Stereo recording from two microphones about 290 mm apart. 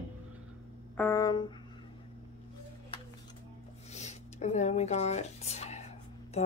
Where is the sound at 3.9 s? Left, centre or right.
Left.